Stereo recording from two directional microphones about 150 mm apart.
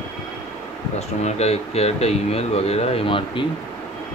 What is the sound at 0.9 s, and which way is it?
Speech, 45° left (ahead or behind).